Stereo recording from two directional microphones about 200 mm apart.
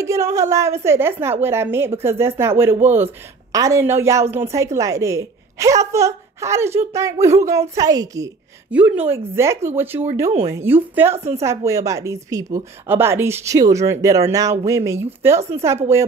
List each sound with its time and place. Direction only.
0.0 s a woman's voice: 15° right (ahead or behind)
11.1 s a woman's voice: 30° right (ahead or behind)
11.4 s speech: 15° right (ahead or behind)